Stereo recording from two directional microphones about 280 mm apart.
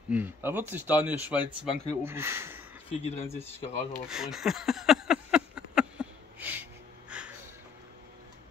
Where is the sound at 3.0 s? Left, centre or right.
Left.